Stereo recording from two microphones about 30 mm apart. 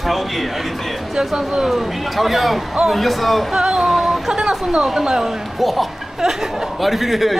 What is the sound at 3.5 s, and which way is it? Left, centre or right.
Speech, right.